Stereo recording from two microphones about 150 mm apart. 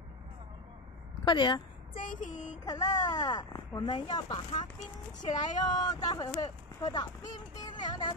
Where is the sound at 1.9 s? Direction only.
60° left (ahead or behind).